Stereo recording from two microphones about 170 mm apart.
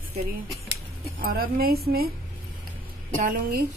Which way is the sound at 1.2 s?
60° right (ahead or behind).